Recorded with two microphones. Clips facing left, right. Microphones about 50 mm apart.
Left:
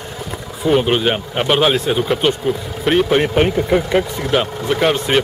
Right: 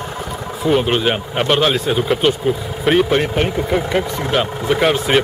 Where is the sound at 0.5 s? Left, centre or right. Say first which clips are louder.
Left 1 dB; centre.